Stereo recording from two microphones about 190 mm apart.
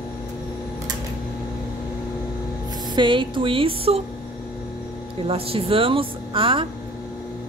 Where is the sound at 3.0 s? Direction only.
25° right (ahead or behind).